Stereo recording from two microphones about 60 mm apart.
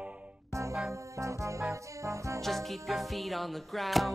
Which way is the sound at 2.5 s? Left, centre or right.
Centre.